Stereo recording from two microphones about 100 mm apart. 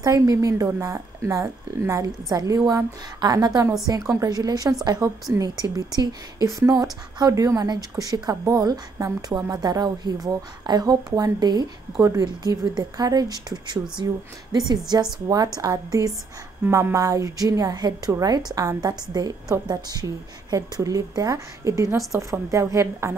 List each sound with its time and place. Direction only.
0.0 s a woman's voice: 35° right (ahead or behind)
12.0 s a woman's voice: 35° right (ahead or behind)
12.3 s a woman's voice: 45° right (ahead or behind)